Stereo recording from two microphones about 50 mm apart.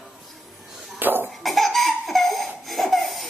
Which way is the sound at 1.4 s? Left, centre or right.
Centre.